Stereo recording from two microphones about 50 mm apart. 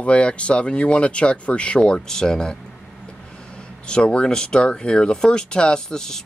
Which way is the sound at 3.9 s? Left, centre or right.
Centre.